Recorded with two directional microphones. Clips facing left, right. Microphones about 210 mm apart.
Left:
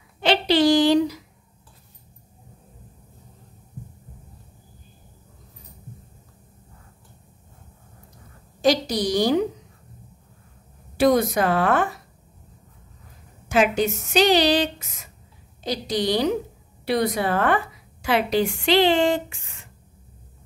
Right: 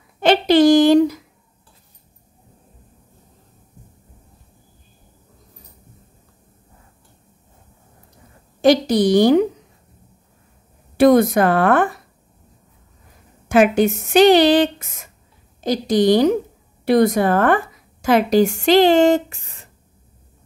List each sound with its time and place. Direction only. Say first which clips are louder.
0.2 s a sound: right 6 dB; 50° right (ahead or behind)
8.5 s a woman's voice: right 6 dB; 55° right (ahead or behind)
11.0 s speech: right 6 dB; 55° right (ahead or behind)
13.5 s speech: right 6 dB; 55° right (ahead or behind); by 19.7 s 40° right (ahead or behind)